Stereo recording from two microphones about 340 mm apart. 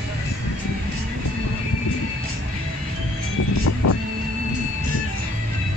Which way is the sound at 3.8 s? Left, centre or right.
Left.